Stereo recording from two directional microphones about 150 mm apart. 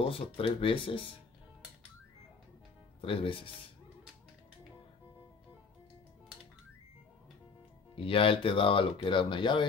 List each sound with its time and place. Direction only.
0.1 s speech: 40° left (ahead or behind)
3.0 s speech: 35° left (ahead or behind)
7.9 s speech: 35° left (ahead or behind)